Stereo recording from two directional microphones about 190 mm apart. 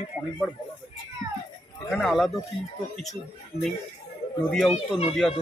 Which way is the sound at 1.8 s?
Centre (ahead or behind).